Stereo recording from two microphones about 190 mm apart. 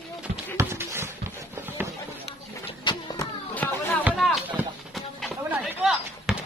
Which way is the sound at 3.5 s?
10° left (ahead or behind).